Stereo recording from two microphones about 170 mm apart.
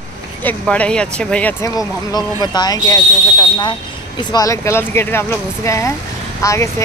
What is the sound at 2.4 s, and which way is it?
Speech, 25° left (ahead or behind).